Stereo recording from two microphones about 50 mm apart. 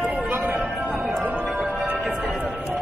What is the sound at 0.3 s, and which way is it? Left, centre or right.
Music, right.